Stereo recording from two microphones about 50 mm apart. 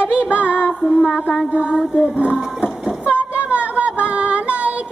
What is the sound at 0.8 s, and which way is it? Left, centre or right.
Music, left.